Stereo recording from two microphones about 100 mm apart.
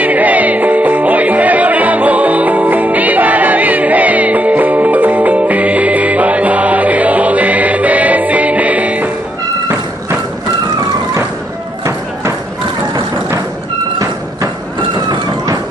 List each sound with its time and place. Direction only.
0.0 s music: 15° right (ahead or behind)
14.8 s vehicle: 45° right (ahead or behind)